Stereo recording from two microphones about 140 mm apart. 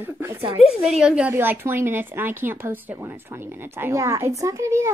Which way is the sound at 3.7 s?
20° right (ahead or behind).